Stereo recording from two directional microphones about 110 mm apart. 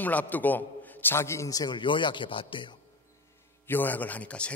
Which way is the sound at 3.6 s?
15° left (ahead or behind).